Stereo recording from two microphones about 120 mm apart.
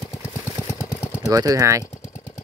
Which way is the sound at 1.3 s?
30° right (ahead or behind).